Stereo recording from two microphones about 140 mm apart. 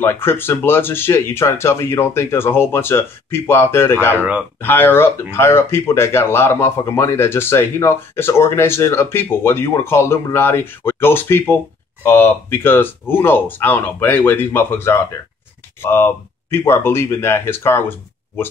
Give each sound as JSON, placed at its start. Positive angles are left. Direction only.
{"t": 0.0, "sound": "speech", "side_deg": 15}
{"t": 4.2, "sound": "speech", "side_deg": -10}
{"t": 4.6, "sound": "speech", "side_deg": 15}